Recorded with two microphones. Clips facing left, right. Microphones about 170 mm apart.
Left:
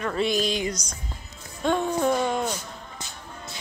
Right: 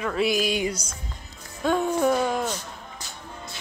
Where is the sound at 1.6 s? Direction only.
5° right (ahead or behind).